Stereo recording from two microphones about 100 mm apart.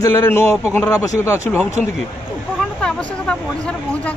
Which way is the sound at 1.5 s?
10° right (ahead or behind).